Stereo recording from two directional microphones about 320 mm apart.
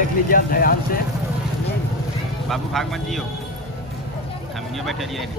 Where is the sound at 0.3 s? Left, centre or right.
Left.